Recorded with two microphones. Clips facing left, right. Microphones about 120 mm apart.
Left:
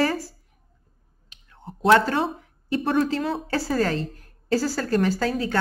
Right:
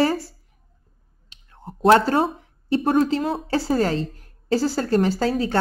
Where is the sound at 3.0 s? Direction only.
25° right (ahead or behind).